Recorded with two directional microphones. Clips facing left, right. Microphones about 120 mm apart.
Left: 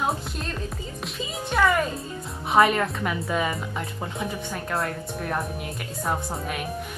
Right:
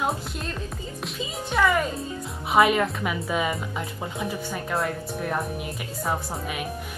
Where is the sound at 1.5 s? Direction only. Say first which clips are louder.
Even; centre (ahead or behind).